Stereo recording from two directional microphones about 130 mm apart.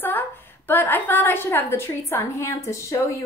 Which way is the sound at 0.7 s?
15° left (ahead or behind).